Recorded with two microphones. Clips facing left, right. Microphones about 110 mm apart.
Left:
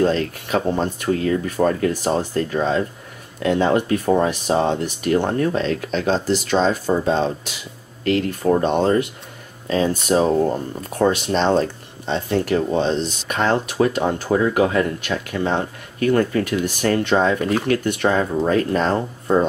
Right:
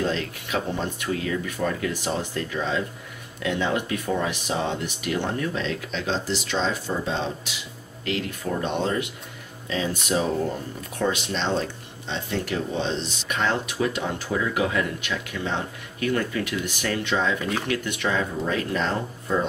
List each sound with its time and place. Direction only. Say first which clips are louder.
0.0 s speech: left 8 dB; 45° left (ahead or behind)